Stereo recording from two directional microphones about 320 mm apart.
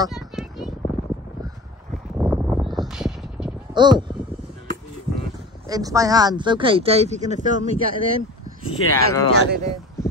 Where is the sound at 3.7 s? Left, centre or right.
Centre.